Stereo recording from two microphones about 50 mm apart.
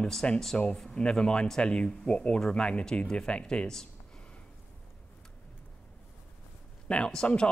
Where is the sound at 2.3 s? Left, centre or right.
Centre.